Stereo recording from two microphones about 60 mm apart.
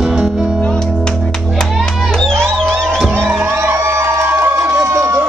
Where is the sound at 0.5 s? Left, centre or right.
Centre.